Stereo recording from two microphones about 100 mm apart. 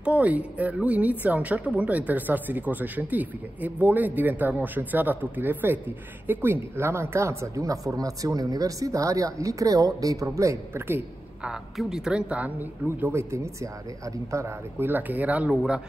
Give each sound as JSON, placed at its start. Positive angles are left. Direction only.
{"t": 0.0, "sound": "a woman's voice", "side_deg": -15}
{"t": 11.4, "sound": "a woman's voice", "side_deg": -5}